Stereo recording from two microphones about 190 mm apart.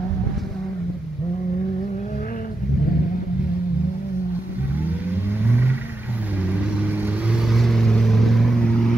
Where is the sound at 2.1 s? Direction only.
45° left (ahead or behind).